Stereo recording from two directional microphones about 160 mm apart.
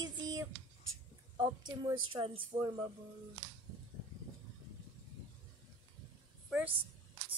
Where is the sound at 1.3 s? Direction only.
25° right (ahead or behind).